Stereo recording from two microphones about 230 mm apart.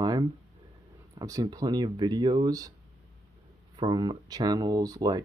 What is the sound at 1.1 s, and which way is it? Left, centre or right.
Speech, centre.